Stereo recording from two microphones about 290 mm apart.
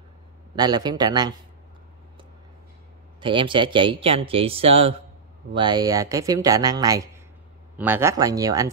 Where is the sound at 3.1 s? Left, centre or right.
Centre.